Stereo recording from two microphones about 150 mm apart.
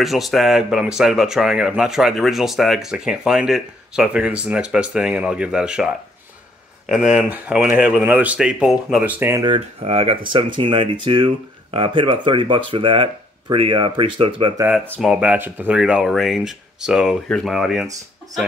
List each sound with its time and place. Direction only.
0.0 s speech: centre (ahead or behind)
6.9 s speech: 5° right (ahead or behind)
9.2 s speech: 20° right (ahead or behind)
9.5 s speech: 40° right (ahead or behind)
15.0 s speech: 5° right (ahead or behind)